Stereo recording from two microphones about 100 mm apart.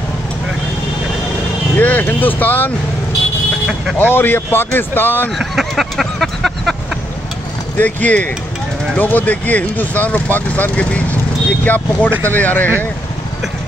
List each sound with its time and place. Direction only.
1.8 s speech: 20° left (ahead or behind)
4.0 s speech: 20° left (ahead or behind)
5.3 s a sound: centre (ahead or behind)
7.7 s speech: 15° left (ahead or behind)